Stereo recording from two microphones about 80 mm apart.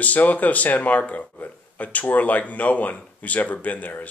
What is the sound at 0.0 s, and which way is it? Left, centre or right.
Speech, centre.